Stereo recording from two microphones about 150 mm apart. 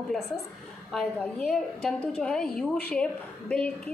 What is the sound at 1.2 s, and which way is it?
A woman's voice, 5° left (ahead or behind).